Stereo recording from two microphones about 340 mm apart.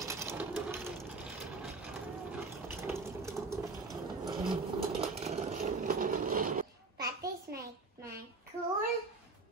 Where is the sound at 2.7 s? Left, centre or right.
Centre.